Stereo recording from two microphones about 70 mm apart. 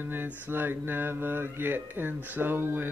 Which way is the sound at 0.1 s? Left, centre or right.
Right.